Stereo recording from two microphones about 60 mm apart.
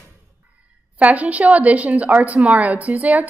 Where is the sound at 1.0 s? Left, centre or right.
Right.